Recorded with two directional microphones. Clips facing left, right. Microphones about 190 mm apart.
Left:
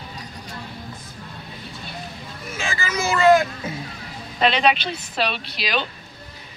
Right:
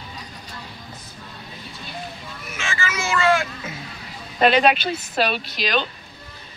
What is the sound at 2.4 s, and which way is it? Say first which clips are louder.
Speech: left 1 dB; 35° left (ahead or behind).